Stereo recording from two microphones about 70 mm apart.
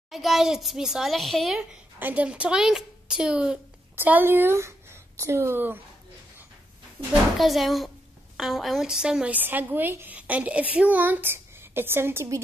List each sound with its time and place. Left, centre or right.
0.1 s a child's voice: centre
2.0 s a woman's voice: right
2.2 s a woman's voice: centre
3.9 s speech: right
7.3 s a child's voice: centre
9.3 s speech: right